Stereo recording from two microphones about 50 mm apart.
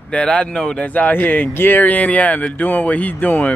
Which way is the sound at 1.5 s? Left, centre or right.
Left.